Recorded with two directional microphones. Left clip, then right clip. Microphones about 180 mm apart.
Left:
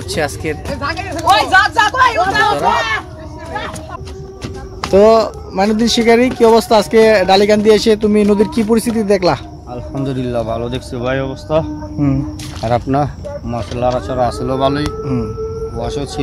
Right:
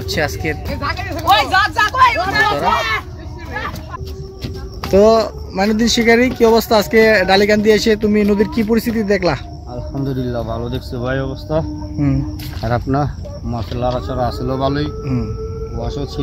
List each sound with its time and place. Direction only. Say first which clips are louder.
0.1 s speech: left 1 dB; 5° left (ahead or behind)
0.7 s speech: left 2 dB; 50° left (ahead or behind)
4.9 s speech: left 2 dB; 5° left (ahead or behind)